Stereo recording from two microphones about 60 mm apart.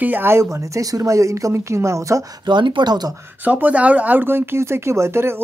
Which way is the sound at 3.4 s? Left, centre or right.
Right.